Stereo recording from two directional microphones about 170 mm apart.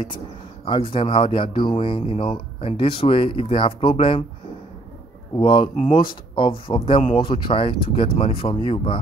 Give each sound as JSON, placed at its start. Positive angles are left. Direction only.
{"t": 0.7, "sound": "speech", "side_deg": 30}
{"t": 5.4, "sound": "speech", "side_deg": 30}